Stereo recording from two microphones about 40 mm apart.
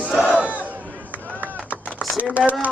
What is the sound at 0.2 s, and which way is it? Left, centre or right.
Battle cry, right.